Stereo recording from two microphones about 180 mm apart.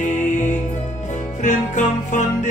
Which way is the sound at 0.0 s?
40° left (ahead or behind).